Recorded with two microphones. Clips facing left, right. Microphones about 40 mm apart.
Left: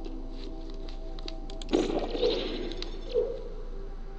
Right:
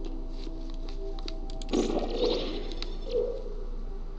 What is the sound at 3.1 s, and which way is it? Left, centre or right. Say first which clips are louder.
Bird: left 1 dB; left.